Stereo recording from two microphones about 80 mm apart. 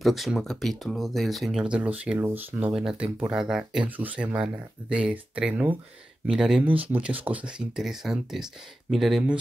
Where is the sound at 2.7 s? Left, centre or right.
Centre.